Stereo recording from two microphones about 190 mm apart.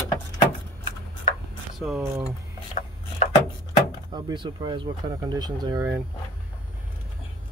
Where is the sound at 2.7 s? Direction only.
35° left (ahead or behind).